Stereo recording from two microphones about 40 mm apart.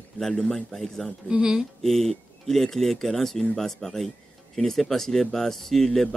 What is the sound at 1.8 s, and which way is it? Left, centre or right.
Speech, centre.